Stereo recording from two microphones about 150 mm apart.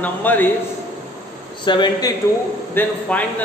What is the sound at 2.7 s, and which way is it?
Speech, 10° left (ahead or behind).